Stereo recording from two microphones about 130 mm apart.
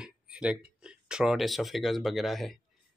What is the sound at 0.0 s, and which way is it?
Speech, 5° right (ahead or behind).